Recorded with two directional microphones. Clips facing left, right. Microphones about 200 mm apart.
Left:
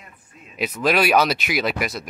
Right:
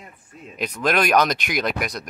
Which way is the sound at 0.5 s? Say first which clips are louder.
Left 1 dB; 5° left (ahead or behind).